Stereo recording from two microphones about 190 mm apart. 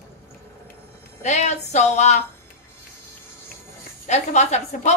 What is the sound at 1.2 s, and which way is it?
Music, 35° left (ahead or behind).